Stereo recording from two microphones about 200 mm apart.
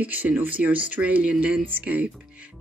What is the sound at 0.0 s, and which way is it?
Speech, 10° right (ahead or behind).